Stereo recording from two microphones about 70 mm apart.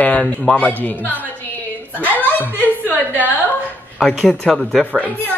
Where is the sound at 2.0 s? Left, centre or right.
Left.